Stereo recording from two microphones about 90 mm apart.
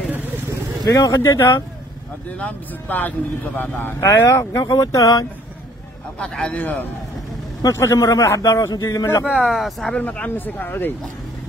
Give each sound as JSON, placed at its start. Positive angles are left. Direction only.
{"t": 0.8, "sound": "speech", "side_deg": 40}
{"t": 2.3, "sound": "speech", "side_deg": 15}
{"t": 4.0, "sound": "speech", "side_deg": 35}
{"t": 6.1, "sound": "a man's voice", "side_deg": 10}
{"t": 7.7, "sound": "a man's voice", "side_deg": 30}
{"t": 9.2, "sound": "speech", "side_deg": -5}
{"t": 9.9, "sound": "speech", "side_deg": 15}